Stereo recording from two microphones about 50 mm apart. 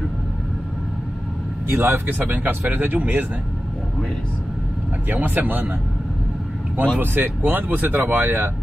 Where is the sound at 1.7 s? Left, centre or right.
Right.